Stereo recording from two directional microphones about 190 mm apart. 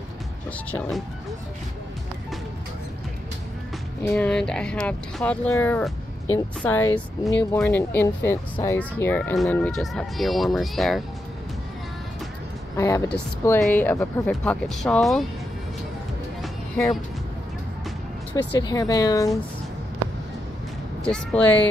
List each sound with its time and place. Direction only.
0.7 s speech: 5° left (ahead or behind)
4.0 s a woman's voice: 5° left (ahead or behind)
12.7 s a woman's voice: 15° left (ahead or behind)
18.3 s speech: 20° left (ahead or behind)
21.0 s a woman's voice: 5° left (ahead or behind)